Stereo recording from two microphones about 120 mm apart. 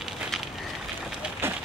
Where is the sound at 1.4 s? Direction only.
20° right (ahead or behind).